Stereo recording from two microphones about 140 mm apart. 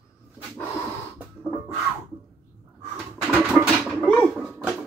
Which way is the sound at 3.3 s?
Centre (ahead or behind).